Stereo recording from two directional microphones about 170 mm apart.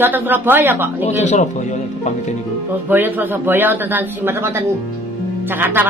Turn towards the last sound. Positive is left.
turn(degrees=-10)  # may be behind; listen again after turning